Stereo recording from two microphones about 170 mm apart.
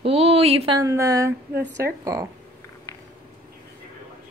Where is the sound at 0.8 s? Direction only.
20° right (ahead or behind).